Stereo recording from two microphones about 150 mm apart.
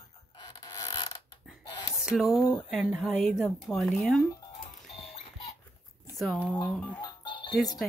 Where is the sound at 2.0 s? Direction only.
Centre (ahead or behind).